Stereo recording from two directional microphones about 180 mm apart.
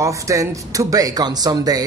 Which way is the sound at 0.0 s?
15° right (ahead or behind).